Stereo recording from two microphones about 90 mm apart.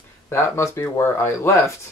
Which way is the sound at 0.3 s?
30° left (ahead or behind).